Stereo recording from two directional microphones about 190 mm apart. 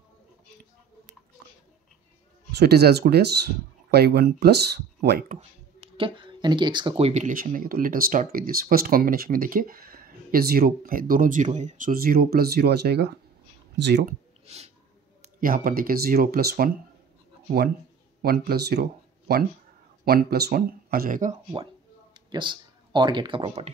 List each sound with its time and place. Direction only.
2.5 s speech: 55° right (ahead or behind)
5.3 s speech: 30° right (ahead or behind); by 14.1 s 60° right (ahead or behind)
14.4 s a sound: 35° right (ahead or behind)
15.2 s speech: 45° right (ahead or behind)
18.2 s speech: 55° right (ahead or behind)
22.1 s speech: 25° right (ahead or behind)